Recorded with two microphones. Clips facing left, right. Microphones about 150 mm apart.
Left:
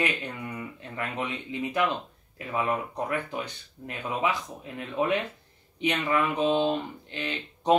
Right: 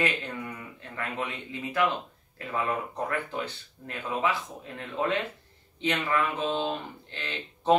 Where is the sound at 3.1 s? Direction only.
15° left (ahead or behind).